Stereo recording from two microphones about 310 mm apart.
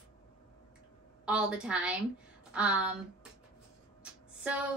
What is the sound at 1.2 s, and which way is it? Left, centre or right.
A woman's voice, centre.